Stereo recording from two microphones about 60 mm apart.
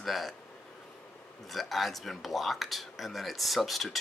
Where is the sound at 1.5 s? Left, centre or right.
Centre.